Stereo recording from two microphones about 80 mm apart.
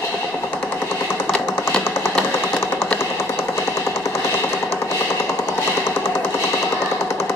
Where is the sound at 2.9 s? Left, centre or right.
Left.